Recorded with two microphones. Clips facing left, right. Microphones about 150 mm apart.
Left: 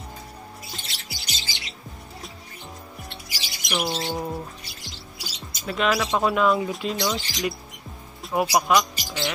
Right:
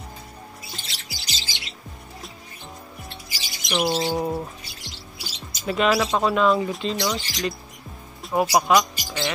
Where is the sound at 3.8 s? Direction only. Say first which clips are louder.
Right 6 dB; 10° right (ahead or behind).